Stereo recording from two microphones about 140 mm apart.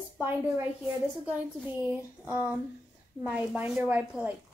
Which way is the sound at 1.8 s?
10° right (ahead or behind).